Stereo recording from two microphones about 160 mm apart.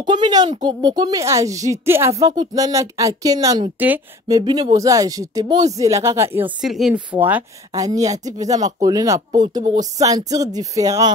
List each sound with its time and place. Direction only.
0.0 s speech: 25° right (ahead or behind)
6.6 s speech: centre (ahead or behind)
7.7 s speech: 20° right (ahead or behind)